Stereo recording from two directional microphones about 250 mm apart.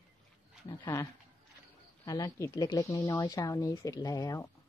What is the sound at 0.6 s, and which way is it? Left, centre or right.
Speech, centre.